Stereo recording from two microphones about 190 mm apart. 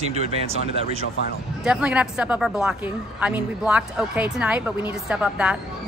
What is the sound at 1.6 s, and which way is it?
A woman's voice, 5° right (ahead or behind).